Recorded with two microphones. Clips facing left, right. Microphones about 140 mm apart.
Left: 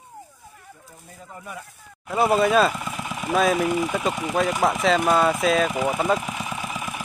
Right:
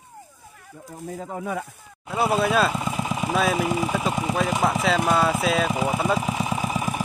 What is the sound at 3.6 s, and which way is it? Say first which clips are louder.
Speech: left 1 dB; 30° right (ahead or behind).